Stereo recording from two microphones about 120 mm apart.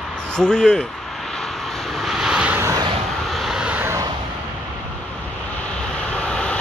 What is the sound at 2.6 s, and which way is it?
Vehicle, 25° right (ahead or behind).